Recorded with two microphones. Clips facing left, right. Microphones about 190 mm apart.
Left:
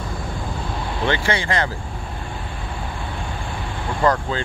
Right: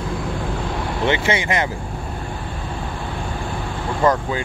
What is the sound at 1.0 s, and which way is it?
Speech, 20° right (ahead or behind).